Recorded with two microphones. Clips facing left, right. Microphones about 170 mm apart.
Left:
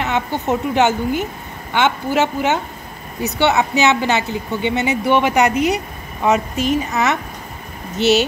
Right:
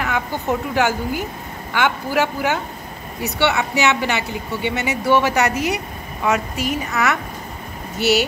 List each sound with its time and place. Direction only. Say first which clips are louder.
0.0 s a woman's voice: left 3 dB; 20° left (ahead or behind)